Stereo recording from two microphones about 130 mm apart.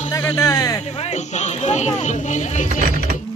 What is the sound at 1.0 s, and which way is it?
Speech, 60° left (ahead or behind).